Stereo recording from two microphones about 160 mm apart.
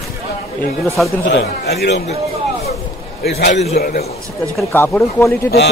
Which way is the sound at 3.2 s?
85° left.